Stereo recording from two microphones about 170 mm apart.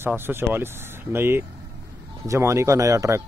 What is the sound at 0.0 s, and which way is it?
Speech, 15° right (ahead or behind).